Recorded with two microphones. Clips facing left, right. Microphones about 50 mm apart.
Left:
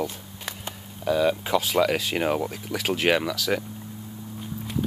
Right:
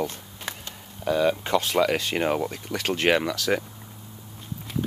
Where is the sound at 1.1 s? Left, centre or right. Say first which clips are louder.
Even; centre.